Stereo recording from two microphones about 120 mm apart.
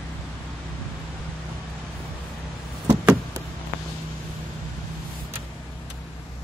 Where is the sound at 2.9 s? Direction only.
20° right (ahead or behind).